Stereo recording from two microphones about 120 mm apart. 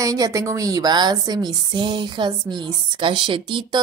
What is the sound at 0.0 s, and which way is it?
Speech, 30° right (ahead or behind).